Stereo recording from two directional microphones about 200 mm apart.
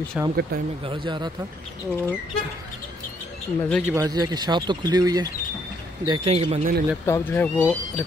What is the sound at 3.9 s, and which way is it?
Speech, 15° right (ahead or behind).